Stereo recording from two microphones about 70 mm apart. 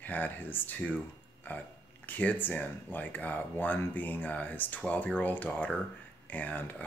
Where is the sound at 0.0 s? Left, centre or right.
Left.